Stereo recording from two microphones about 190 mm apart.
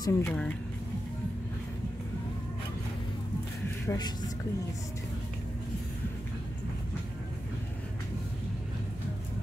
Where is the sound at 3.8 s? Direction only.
20° left (ahead or behind).